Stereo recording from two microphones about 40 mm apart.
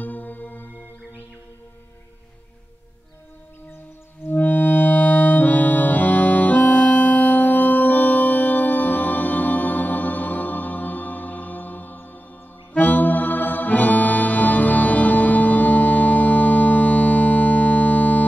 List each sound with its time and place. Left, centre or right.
0.0 s music: left
4.3 s music: left